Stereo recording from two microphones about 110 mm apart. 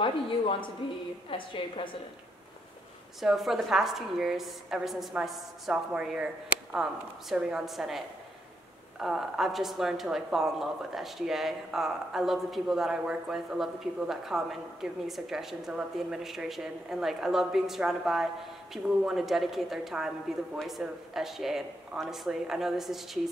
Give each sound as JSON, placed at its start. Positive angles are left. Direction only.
{"t": 0.0, "sound": "speech", "side_deg": 50}
{"t": 3.2, "sound": "speech", "side_deg": 0}
{"t": 9.0, "sound": "speech", "side_deg": -5}